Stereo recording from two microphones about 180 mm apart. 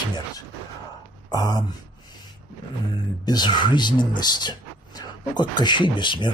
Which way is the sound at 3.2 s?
25° left (ahead or behind).